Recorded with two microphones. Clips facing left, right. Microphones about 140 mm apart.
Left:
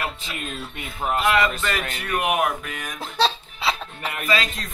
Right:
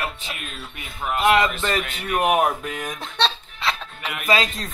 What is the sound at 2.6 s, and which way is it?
Music, 25° right (ahead or behind).